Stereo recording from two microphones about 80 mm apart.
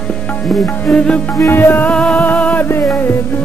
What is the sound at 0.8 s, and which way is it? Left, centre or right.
Music, centre.